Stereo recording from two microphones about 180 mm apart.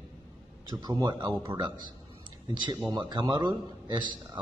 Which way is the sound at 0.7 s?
20° right (ahead or behind).